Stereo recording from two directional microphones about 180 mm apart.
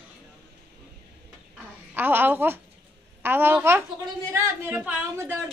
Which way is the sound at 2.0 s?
10° right (ahead or behind).